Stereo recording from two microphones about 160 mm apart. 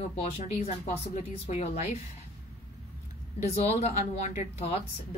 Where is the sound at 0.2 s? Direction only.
45° left (ahead or behind).